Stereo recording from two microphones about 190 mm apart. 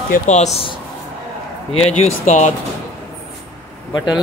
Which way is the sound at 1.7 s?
35° left (ahead or behind).